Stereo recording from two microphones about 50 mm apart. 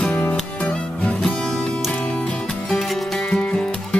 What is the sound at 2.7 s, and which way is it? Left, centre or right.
Music, centre.